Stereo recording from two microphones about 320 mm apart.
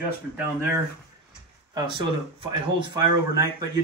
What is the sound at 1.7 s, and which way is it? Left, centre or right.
Speech, centre.